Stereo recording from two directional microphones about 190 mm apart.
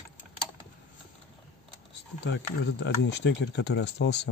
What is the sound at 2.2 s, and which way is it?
Speech, 70° left (ahead or behind).